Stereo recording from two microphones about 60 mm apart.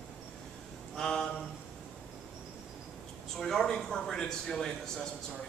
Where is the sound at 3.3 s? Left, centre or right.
Centre.